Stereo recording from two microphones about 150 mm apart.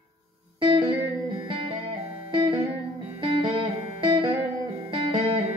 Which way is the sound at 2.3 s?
30° right (ahead or behind).